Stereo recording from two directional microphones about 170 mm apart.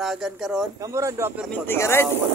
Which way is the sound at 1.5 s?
15° left (ahead or behind).